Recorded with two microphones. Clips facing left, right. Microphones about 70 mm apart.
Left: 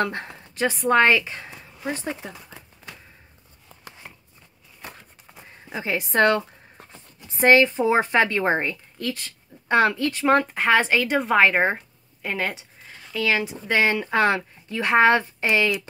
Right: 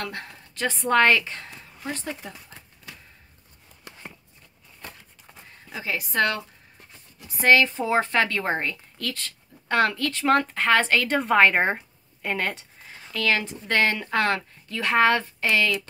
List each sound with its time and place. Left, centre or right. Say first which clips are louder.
0.0 s a woman's voice: left 8 dB; left
0.7 s speech: left 1 dB; centre
5.2 s a sound: right 1 dB; centre
5.7 s a woman's voice: left 4 dB; left; by 11.1 s centre
11.1 s a woman's voice: even; centre; by 15.7 s left